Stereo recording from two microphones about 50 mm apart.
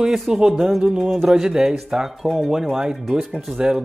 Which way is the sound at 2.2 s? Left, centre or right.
Centre.